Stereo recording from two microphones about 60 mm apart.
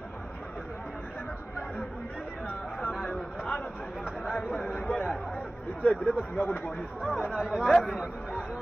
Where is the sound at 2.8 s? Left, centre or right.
Centre.